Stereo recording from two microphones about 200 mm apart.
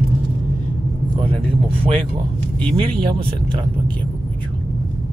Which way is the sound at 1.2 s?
25° right (ahead or behind).